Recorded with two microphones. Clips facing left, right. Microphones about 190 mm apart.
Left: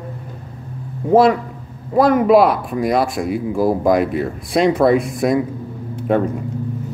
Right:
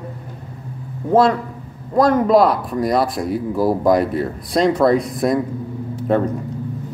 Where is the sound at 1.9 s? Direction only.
10° left (ahead or behind).